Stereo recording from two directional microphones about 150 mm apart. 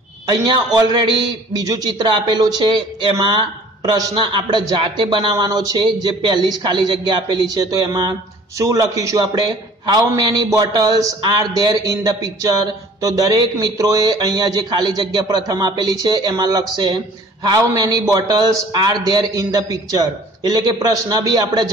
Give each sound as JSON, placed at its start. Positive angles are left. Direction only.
{"t": 0.3, "sound": "a man's voice", "side_deg": -30}